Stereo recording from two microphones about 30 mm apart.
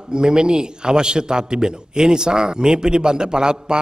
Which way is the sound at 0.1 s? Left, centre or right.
Right.